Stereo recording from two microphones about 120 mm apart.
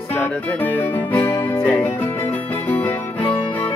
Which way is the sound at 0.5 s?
15° left (ahead or behind).